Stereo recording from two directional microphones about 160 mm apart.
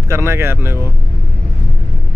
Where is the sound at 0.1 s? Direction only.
15° right (ahead or behind).